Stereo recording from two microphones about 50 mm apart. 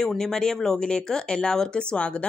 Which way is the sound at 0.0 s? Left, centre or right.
Centre.